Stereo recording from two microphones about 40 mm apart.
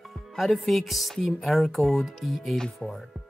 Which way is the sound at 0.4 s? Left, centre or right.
Centre.